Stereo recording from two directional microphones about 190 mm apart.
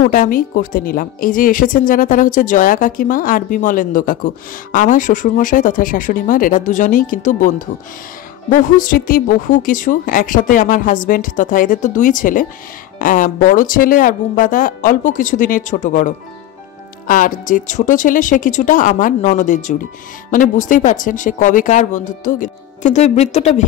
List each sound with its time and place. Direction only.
0.1 s speech: 45° left (ahead or behind)
17.1 s speech: 45° left (ahead or behind)